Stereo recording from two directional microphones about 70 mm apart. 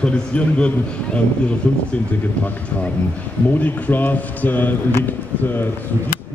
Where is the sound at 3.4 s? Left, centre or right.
Left.